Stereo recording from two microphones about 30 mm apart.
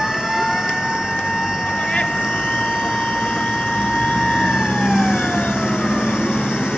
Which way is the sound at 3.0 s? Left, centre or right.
Left.